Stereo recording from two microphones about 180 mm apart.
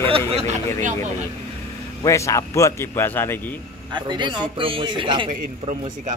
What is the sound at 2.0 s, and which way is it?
Speech, 15° left (ahead or behind).